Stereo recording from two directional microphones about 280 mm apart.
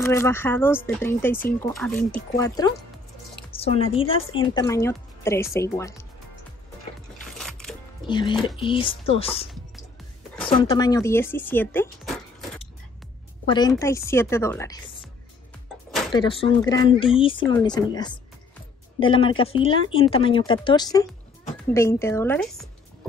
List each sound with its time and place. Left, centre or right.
0.0 s a woman's voice: centre
7.3 s music: centre
8.1 s a woman's voice: centre
10.6 s speech: centre
13.5 s speech: centre
16.1 s speech: centre